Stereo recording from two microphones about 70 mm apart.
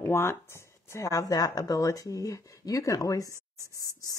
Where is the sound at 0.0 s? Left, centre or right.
Left.